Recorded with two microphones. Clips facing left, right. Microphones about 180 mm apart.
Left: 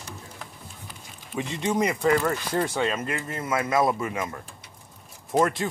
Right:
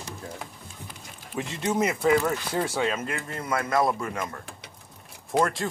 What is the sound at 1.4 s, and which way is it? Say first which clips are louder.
Speech: left 1 dB; centre (ahead or behind).